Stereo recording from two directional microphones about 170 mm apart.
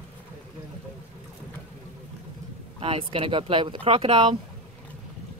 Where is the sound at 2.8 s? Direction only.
35° right (ahead or behind).